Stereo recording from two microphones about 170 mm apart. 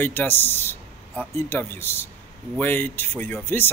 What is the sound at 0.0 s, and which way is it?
Speech, 10° left (ahead or behind).